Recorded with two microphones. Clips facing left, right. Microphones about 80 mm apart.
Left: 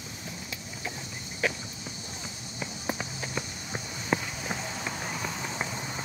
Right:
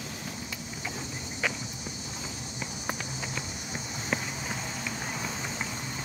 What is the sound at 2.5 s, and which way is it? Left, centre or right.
Walk, centre.